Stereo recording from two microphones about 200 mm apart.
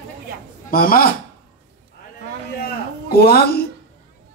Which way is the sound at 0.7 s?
45° left (ahead or behind).